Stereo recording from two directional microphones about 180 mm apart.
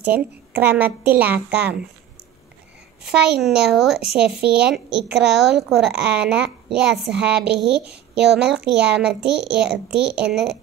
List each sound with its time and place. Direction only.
0.0 s a child's voice: 10° right (ahead or behind)
3.1 s a woman's voice: 5° right (ahead or behind)
8.1 s a woman's voice: 65° right (ahead or behind)
8.4 s a woman's voice: 5° right (ahead or behind)